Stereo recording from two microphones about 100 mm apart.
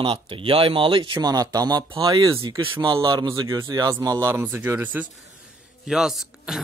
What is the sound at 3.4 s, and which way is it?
Speech, 30° right (ahead or behind).